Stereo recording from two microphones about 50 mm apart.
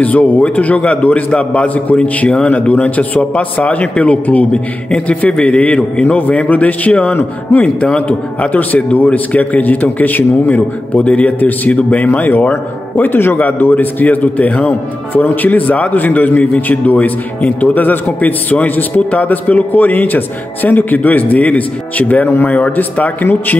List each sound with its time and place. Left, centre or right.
0.0 s a man's voice: left
4.5 s a man's voice: centre
6.9 s a man's voice: centre
8.4 s a man's voice: left
11.1 s a man's voice: left
11.3 s a man's voice: left